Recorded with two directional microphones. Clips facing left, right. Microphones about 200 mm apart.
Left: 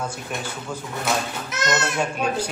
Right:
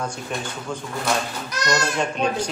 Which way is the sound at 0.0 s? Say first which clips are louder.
Right 1 dB; 5° left (ahead or behind).